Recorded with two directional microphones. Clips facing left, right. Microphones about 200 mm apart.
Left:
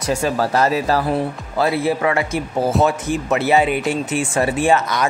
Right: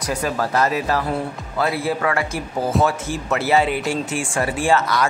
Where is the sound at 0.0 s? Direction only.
25° left (ahead or behind).